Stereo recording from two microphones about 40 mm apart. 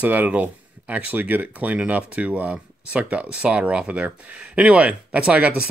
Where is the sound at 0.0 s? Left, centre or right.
Right.